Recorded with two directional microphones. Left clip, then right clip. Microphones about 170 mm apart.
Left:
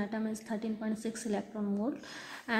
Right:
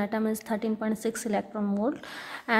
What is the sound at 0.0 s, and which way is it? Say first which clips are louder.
A woman's voice: right 8 dB; 40° right (ahead or behind).